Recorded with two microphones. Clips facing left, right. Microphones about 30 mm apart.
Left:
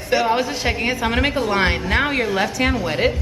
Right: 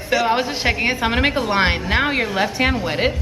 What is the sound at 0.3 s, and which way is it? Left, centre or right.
A woman's voice, centre.